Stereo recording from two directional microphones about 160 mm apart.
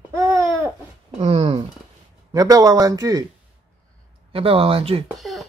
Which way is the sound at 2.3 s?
20° right (ahead or behind).